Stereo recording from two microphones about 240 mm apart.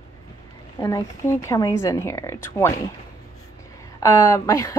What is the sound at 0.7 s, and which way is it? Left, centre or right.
A woman's voice, centre.